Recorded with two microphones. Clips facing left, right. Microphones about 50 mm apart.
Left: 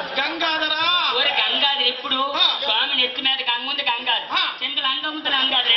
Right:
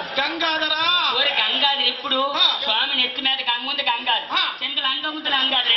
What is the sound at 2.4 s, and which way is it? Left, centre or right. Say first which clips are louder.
A woman's voice: even; centre.